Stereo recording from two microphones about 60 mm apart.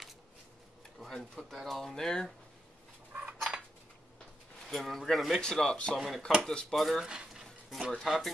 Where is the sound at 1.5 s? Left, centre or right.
Centre.